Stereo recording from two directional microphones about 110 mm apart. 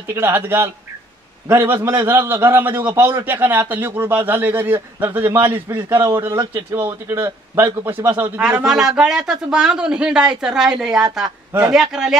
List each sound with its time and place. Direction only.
0.1 s speech: 20° right (ahead or behind)
6.3 s speech: 45° right (ahead or behind)
6.7 s speech: 25° right (ahead or behind)
8.4 s speech: 10° right (ahead or behind)